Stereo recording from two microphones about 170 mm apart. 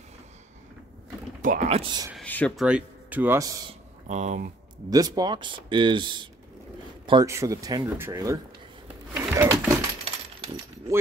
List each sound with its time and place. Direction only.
1.4 s speech: 50° right (ahead or behind)
1.7 s speech: 30° right (ahead or behind)
2.1 s a sound: 10° left (ahead or behind)
2.6 s speech: 10° right (ahead or behind)
4.1 s speech: 45° right (ahead or behind)
4.8 s speech: 20° right (ahead or behind)
9.3 s a sound: 15° right (ahead or behind)